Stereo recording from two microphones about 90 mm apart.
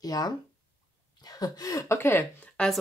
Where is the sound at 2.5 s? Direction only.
10° left (ahead or behind).